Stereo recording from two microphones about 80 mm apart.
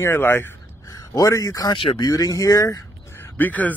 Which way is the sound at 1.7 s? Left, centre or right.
Left.